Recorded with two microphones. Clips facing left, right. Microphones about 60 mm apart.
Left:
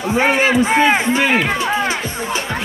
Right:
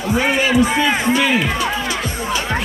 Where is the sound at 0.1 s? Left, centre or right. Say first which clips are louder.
Left 2 dB; left.